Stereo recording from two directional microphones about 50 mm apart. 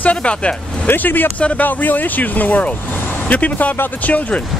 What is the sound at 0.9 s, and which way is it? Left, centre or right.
Speech, left.